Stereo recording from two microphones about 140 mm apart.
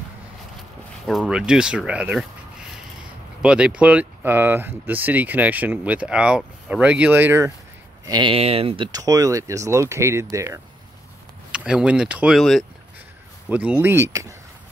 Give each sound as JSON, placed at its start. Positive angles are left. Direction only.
{"t": 1.0, "sound": "speech", "side_deg": 0}
{"t": 3.4, "sound": "speech", "side_deg": -5}
{"t": 8.1, "sound": "speech", "side_deg": -35}
{"t": 8.4, "sound": "speech", "side_deg": -45}
{"t": 11.5, "sound": "speech", "side_deg": -5}
{"t": 13.5, "sound": "speech", "side_deg": -10}